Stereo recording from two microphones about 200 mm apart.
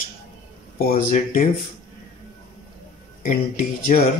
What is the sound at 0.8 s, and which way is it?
Speech, 45° left (ahead or behind).